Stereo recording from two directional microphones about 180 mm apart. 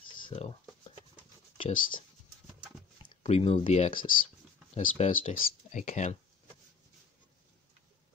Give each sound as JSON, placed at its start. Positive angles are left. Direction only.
{"t": 0.1, "sound": "a sound", "side_deg": 25}
{"t": 1.7, "sound": "speech", "side_deg": 50}
{"t": 3.3, "sound": "speech", "side_deg": 35}